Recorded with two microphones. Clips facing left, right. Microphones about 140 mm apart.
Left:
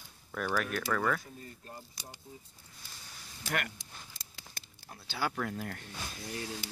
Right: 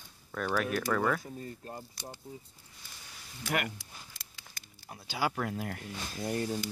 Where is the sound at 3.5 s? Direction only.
5° right (ahead or behind).